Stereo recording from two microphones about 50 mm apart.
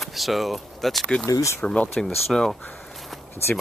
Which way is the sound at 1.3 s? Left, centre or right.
Left.